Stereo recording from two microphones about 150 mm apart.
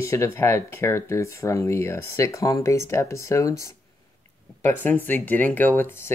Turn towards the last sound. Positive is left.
turn(degrees=15)  # may be behind; listen again after turning